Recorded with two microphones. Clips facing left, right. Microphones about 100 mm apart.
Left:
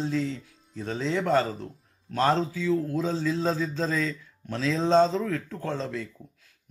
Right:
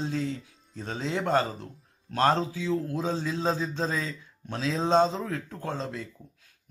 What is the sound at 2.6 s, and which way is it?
Speech, 20° right (ahead or behind).